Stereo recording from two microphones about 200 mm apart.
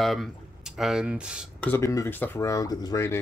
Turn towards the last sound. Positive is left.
turn(degrees=15)  # may be behind; listen again after turning